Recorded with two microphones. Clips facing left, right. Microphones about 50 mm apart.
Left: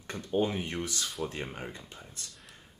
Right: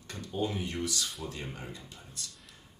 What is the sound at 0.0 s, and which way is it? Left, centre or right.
Speech, left.